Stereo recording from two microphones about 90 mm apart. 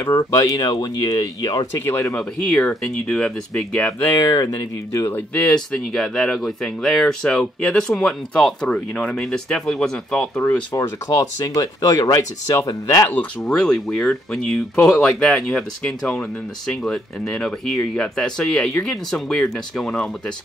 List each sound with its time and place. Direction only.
0.0 s speech: 30° left (ahead or behind)
1.9 s speech: 30° left (ahead or behind)
2.1 s speech: 15° left (ahead or behind)
4.0 s speech: 30° left (ahead or behind)
5.1 s speech: 10° left (ahead or behind)
10.4 s speech: 20° left (ahead or behind)
10.8 s speech: 40° left (ahead or behind)
13.4 s speech: 5° left (ahead or behind)